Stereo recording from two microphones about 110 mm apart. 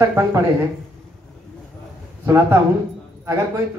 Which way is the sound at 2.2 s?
20° right (ahead or behind).